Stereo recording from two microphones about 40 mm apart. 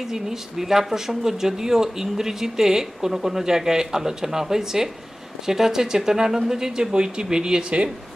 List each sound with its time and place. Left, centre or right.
0.1 s speech: centre